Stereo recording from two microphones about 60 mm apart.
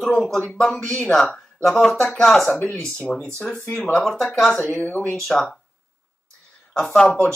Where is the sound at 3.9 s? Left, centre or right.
Centre.